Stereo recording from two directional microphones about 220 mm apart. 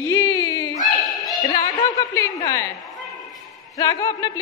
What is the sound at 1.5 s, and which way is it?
A woman's voice, 15° left (ahead or behind).